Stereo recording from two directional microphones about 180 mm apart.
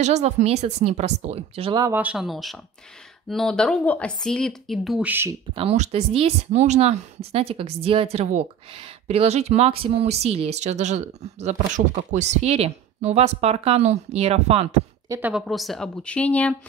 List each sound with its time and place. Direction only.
0.0 s speech: 40° right (ahead or behind)
1.9 s speech: 10° right (ahead or behind)
5.5 s speech: 35° right (ahead or behind)
15.0 s a woman's voice: 10° right (ahead or behind)
15.4 s speech: centre (ahead or behind)